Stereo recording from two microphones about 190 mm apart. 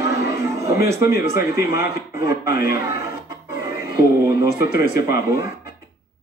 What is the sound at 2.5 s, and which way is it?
Speech, 55° left (ahead or behind).